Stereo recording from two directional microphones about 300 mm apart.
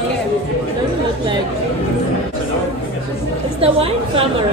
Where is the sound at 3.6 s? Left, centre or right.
Centre.